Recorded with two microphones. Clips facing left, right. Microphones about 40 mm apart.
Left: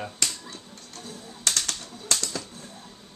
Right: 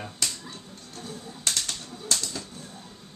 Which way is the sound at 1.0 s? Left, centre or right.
Centre.